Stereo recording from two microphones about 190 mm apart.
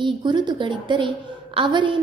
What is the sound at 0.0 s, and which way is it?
A woman's voice, 25° right (ahead or behind).